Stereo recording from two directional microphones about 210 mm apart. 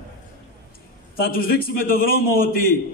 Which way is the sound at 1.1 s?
45° left (ahead or behind).